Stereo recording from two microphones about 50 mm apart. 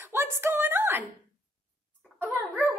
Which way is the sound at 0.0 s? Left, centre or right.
Right.